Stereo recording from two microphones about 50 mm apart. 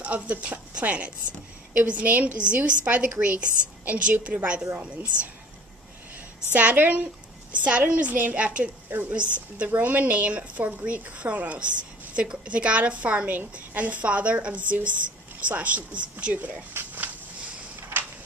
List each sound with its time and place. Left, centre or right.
0.0 s a woman's voice: right
6.5 s a woman's voice: right
9.7 s a woman's voice: right
16.8 s speech: right